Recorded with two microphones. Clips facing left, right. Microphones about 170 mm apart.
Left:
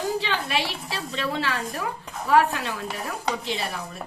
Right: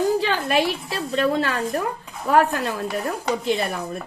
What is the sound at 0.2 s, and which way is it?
A woman's voice, 45° right (ahead or behind).